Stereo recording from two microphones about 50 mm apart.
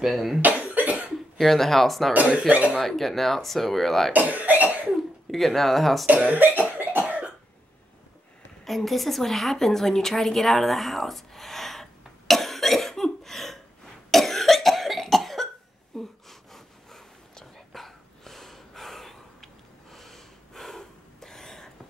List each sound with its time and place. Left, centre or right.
0.0 s speech: centre
0.4 s cough: right
1.1 s speech: centre
2.5 s speech: right
2.8 s speech: centre
4.1 s cough: right
4.9 s cough: centre
6.3 s cough: right
8.6 s a sound: centre
14.1 s cough: centre
16.0 s whispering: centre